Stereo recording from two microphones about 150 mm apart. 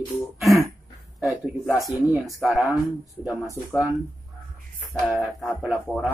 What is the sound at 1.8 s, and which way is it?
Speech, centre (ahead or behind).